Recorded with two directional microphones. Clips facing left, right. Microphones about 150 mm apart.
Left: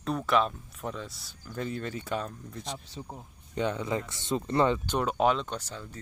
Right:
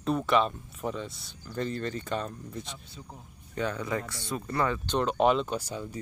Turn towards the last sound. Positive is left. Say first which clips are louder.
# right 5 dB
turn(degrees=-10)  # may be behind; listen again after turning